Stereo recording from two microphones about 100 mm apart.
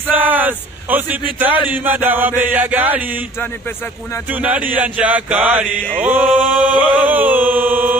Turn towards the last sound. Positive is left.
turn(degrees=-20)  # may be behind; listen again after turning